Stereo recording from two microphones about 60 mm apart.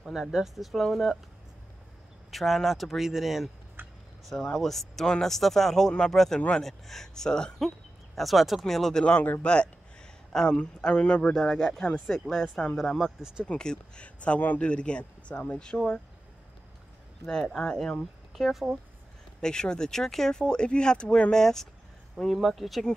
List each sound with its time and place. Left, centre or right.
0.0 s speech: centre
2.3 s speech: centre
3.8 s a sound: right
4.3 s speech: centre
8.2 s speech: centre
9.4 s speech: centre
13.5 s speech: centre
17.3 s speech: centre
19.4 s speech: centre